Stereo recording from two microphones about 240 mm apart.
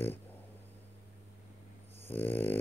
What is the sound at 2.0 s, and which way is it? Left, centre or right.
Dog, centre.